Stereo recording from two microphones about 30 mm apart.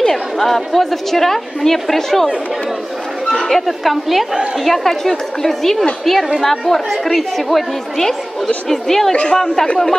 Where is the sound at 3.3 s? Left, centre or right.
Centre.